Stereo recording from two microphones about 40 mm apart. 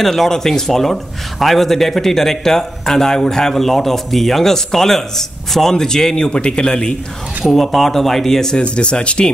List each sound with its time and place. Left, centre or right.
0.0 s a man's voice: centre
7.5 s a man's voice: centre
8.5 s speech: left